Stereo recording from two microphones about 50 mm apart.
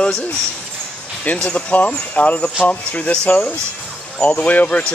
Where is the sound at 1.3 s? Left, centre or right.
Left.